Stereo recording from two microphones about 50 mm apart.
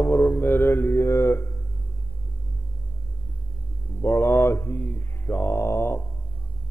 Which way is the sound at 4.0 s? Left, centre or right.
Left.